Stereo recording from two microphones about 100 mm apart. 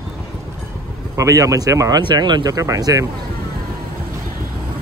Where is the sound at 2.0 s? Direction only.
45° right (ahead or behind).